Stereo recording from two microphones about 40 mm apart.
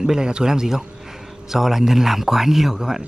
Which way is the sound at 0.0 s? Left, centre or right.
Centre.